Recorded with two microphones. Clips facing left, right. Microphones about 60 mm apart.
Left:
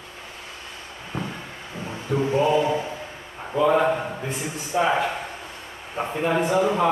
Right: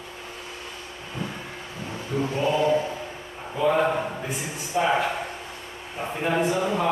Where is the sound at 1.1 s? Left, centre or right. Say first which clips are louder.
Left 2 dB; left.